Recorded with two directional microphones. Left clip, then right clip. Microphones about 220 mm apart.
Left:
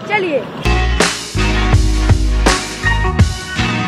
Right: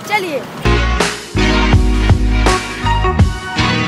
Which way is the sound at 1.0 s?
Centre (ahead or behind).